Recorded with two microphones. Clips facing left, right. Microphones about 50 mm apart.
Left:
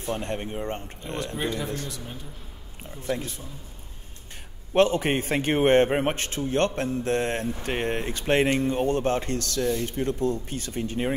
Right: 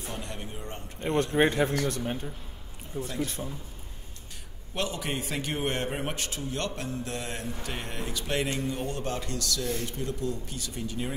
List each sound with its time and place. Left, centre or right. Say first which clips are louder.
0.0 s speech: left 8 dB; left
1.0 s speech: right 7 dB; right
4.7 s speech: left 11 dB; left